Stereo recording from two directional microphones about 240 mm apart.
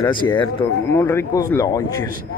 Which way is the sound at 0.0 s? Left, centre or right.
Centre.